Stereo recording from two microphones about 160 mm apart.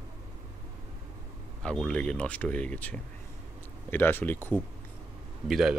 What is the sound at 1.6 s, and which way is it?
Speech, 5° left (ahead or behind).